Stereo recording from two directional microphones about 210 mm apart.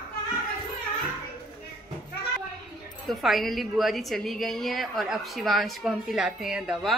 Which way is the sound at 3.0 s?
Centre (ahead or behind).